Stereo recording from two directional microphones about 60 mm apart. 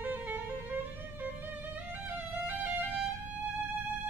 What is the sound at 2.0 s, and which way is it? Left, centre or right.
Music, right.